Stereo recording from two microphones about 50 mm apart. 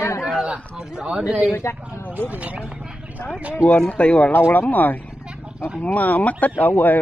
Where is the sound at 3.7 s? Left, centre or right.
Left.